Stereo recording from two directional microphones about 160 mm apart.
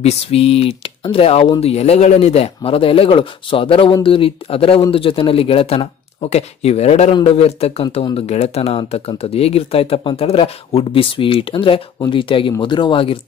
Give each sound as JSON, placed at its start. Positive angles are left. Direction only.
{"t": 0.0, "sound": "speech", "side_deg": 40}